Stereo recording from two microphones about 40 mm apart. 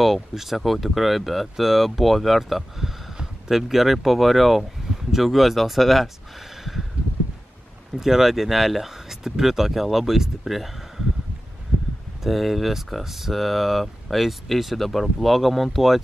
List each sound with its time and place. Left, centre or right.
0.0 s speech: centre
7.0 s a sound: right
8.0 s speech: centre
12.2 s speech: centre